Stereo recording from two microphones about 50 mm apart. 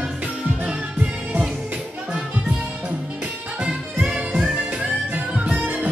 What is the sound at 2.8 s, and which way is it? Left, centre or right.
Music, right.